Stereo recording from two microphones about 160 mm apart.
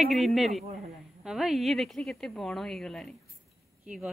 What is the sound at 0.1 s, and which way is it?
A woman's voice, centre (ahead or behind).